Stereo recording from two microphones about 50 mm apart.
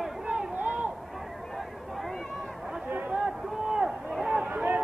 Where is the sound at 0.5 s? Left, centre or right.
Right.